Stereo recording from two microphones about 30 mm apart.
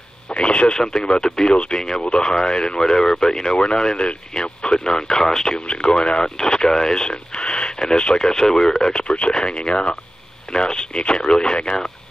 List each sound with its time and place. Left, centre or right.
0.4 s speech: left
0.7 s speech: left
3.5 s speech: left
5.7 s speech: left
8.2 s speech: left